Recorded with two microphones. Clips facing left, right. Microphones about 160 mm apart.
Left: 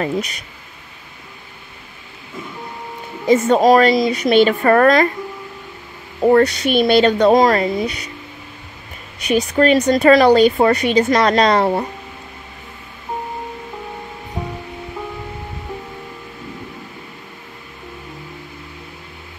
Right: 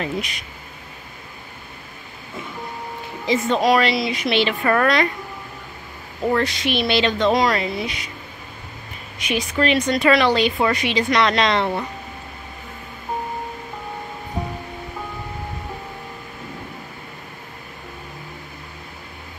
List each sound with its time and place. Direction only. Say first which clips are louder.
3.3 s a woman's voice: left 6 dB; 45° left (ahead or behind)
6.2 s a woman's voice: left 8 dB; 45° left (ahead or behind)
9.3 s a woman's voice: left 6 dB; 40° left (ahead or behind)